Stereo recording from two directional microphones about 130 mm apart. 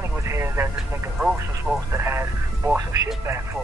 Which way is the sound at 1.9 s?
20° right (ahead or behind).